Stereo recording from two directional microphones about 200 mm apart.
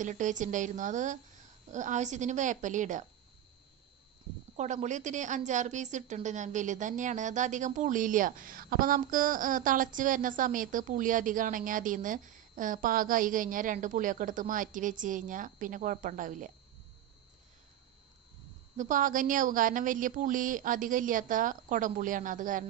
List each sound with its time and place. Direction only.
0.0 s a woman's voice: 40° right (ahead or behind)
4.6 s a woman's voice: 35° right (ahead or behind)
18.8 s a woman's voice: 40° right (ahead or behind)